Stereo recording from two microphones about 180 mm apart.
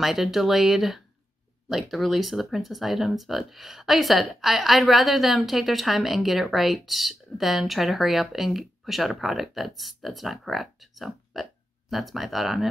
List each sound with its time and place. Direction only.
0.0 s speech: centre (ahead or behind)